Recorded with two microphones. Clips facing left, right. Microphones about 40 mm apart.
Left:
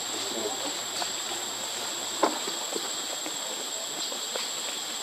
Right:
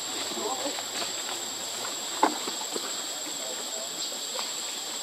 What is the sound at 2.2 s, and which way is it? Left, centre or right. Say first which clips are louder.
Clip-clop: right 1 dB; right.